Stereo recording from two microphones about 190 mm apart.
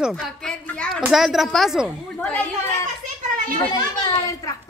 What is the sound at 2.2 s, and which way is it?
A woman's voice, 10° left (ahead or behind).